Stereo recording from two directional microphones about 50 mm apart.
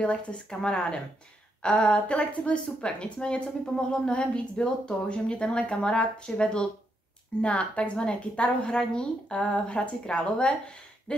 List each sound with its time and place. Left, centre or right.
0.0 s a woman's voice: left
11.1 s owl: left